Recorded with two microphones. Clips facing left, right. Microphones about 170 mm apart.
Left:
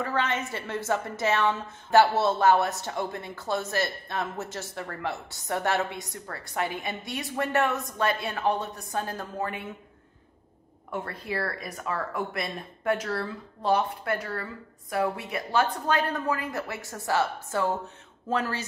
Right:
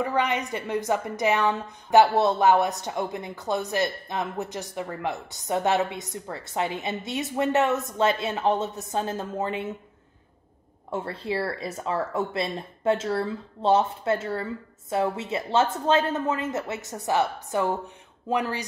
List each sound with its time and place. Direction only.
0.0 s a woman's voice: 15° right (ahead or behind)
10.9 s a woman's voice: 25° right (ahead or behind)